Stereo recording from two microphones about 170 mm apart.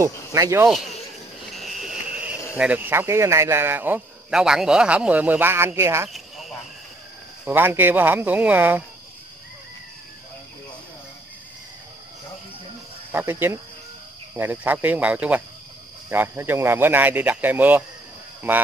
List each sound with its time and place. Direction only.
0.0 s speech: 20° right (ahead or behind)
1.6 s a sound: centre (ahead or behind)
2.5 s speech: 10° right (ahead or behind)
6.0 s a sound: centre (ahead or behind)
7.4 s speech: 10° right (ahead or behind)
13.1 s speech: 15° right (ahead or behind)